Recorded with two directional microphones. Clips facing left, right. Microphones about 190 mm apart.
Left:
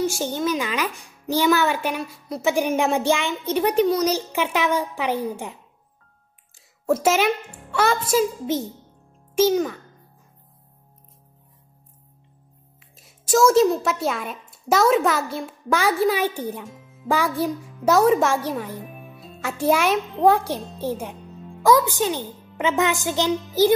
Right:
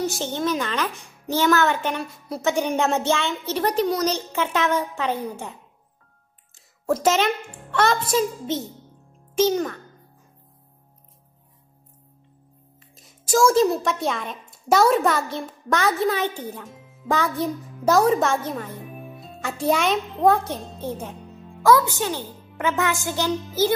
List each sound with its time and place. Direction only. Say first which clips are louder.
0.2 s a child's voice: left 1 dB; 5° left (ahead or behind)
6.9 s a child's voice: left 1 dB; 5° left (ahead or behind)
12.9 s a child's voice: left 1 dB; centre (ahead or behind)
16.6 s music: left 1 dB; centre (ahead or behind)
17.2 s a child's voice: left 1 dB; 5° left (ahead or behind)
21.6 s a child's voice: left 1 dB; 15° left (ahead or behind)